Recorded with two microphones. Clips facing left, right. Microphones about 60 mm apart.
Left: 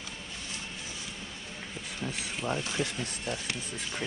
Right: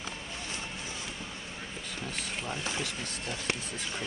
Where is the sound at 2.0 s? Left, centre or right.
Centre.